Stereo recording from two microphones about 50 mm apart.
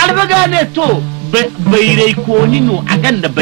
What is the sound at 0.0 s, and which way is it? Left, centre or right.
A man's voice, centre.